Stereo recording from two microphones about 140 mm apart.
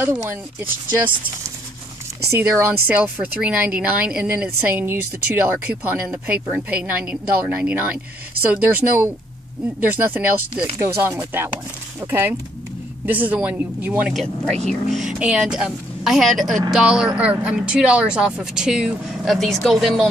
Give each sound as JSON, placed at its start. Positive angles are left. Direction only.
{"t": 0.0, "sound": "speech", "side_deg": -15}
{"t": 2.3, "sound": "speech", "side_deg": -15}
{"t": 14.1, "sound": "speech", "side_deg": 5}